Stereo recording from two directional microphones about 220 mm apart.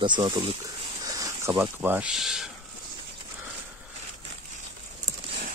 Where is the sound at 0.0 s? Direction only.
20° right (ahead or behind).